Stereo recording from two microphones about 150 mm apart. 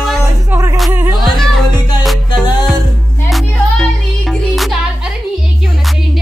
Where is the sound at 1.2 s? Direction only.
Centre (ahead or behind).